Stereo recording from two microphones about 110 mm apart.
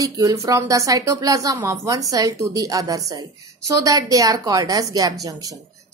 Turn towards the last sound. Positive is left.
turn(degrees=-35)  # may be behind; listen again after turning